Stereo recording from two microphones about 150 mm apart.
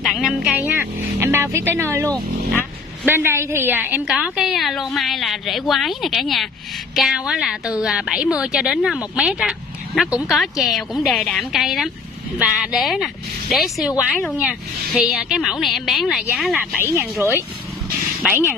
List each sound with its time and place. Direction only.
0.0 s speech: centre (ahead or behind); by 2.0 s 20° right (ahead or behind)
3.1 s a woman's voice: 15° right (ahead or behind)
16.7 s speech: 15° right (ahead or behind)